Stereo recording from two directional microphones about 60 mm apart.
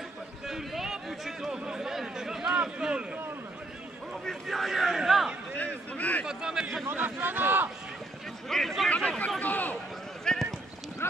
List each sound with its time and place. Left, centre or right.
0.5 s a sound: centre
2.5 s a man's voice: centre
4.3 s speech: centre
5.6 s speech: left
6.2 s a man's voice: centre
6.9 s speech: right
8.5 s speech: centre
9.4 s speech: left
10.2 s a sound: centre